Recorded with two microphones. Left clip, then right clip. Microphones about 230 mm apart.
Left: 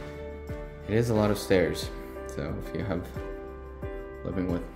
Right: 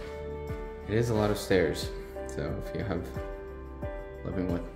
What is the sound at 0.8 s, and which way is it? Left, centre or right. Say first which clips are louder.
Speech: left 2 dB; left.